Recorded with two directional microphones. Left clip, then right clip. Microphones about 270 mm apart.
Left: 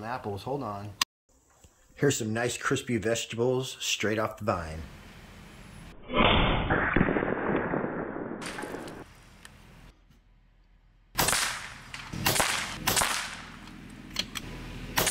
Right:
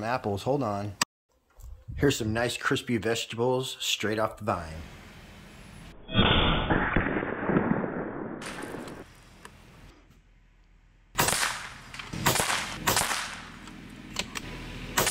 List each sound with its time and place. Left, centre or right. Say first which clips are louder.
0.0 s speech: right 6 dB; right
2.0 s speech: right 1 dB; centre
6.7 s fireworks: left 1 dB; centre
11.2 s whip: right 1 dB; centre